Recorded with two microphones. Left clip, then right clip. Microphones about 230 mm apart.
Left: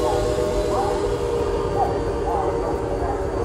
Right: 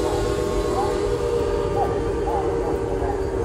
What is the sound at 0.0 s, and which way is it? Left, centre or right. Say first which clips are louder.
Train: left 2 dB; centre.